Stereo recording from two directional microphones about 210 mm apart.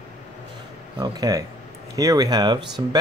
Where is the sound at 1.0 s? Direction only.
15° right (ahead or behind).